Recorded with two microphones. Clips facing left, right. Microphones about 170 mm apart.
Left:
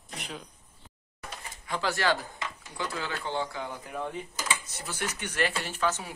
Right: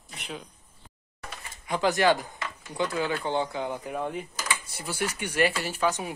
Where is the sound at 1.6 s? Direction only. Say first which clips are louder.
Right 5 dB; 20° right (ahead or behind).